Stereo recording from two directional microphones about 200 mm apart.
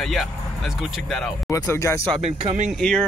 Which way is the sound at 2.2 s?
35° right (ahead or behind).